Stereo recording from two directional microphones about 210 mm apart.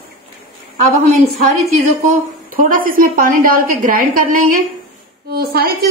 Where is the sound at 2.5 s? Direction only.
40° right (ahead or behind).